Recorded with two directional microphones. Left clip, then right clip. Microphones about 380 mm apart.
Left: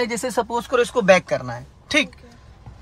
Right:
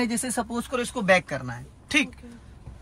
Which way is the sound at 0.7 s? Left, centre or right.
Centre.